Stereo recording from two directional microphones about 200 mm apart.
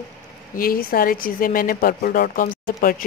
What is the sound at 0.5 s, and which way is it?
Speech, 45° left (ahead or behind).